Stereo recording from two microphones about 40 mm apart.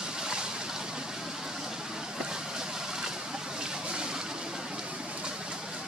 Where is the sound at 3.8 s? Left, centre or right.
Right.